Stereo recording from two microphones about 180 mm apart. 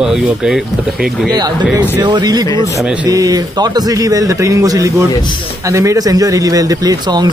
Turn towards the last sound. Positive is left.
turn(degrees=-20)  # may be behind; listen again after turning